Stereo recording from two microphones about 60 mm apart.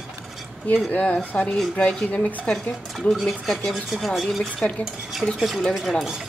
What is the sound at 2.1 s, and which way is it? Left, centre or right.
Speech, left.